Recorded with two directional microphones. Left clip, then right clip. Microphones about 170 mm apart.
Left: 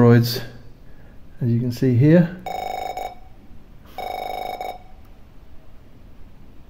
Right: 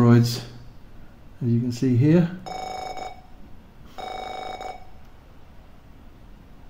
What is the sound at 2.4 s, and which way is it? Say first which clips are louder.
Telephone bell ringing: left 5 dB; 25° left (ahead or behind).